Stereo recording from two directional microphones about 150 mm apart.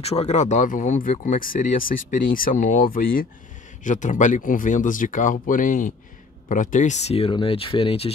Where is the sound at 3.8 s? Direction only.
60° left (ahead or behind).